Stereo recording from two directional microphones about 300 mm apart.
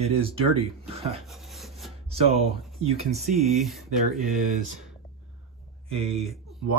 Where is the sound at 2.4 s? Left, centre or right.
Right.